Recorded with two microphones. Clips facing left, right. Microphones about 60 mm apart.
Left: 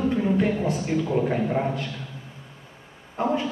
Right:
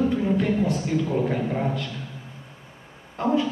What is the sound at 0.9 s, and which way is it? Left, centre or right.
Speech, centre.